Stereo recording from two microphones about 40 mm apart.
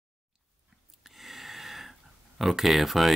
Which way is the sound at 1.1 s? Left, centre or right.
Centre.